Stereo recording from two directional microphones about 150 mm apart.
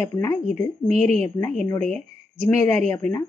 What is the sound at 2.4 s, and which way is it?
Speech, 10° left (ahead or behind).